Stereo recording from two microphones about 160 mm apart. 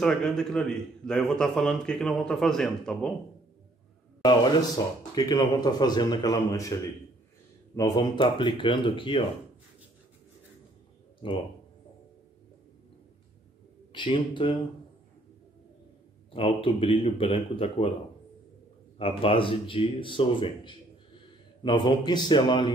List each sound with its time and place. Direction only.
0.0 s a man's voice: 5° left (ahead or behind)
5.1 s speech: 25° left (ahead or behind)
7.7 s speech: 25° left (ahead or behind)
11.2 s speech: 35° left (ahead or behind)
13.9 s speech: 30° left (ahead or behind)
16.3 s speech: 35° left (ahead or behind)
18.9 s speech: 35° left (ahead or behind)